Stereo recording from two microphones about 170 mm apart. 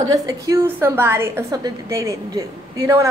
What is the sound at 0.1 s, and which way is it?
A woman's voice, 20° right (ahead or behind).